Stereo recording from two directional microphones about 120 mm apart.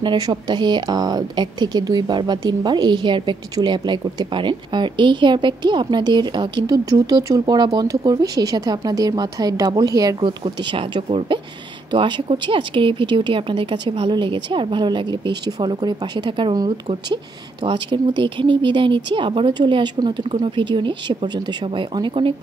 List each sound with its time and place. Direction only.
0.0 s speech: 40° right (ahead or behind)
10.4 s speech: 45° right (ahead or behind)
17.6 s speech: 40° right (ahead or behind)